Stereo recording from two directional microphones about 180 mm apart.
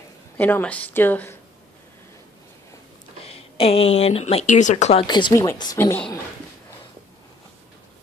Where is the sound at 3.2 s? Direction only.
35° left (ahead or behind).